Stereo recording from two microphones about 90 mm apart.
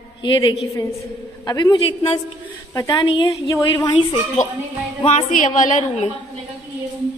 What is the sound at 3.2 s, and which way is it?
Speech, 40° left (ahead or behind).